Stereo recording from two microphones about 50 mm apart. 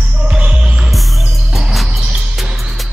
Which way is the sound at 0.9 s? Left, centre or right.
Centre.